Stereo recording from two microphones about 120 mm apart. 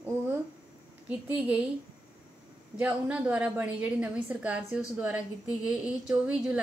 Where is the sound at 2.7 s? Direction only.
10° right (ahead or behind).